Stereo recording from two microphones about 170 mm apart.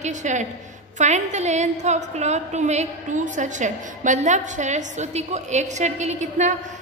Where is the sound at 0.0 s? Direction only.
45° right (ahead or behind).